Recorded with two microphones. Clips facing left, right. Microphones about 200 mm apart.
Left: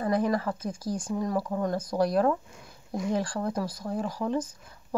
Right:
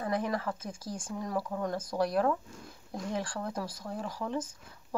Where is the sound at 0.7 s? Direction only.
35° left (ahead or behind).